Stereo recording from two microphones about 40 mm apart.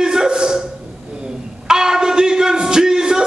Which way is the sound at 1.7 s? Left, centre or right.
Centre.